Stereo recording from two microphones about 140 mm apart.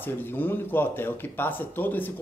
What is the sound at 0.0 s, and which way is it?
A man's voice, 15° left (ahead or behind).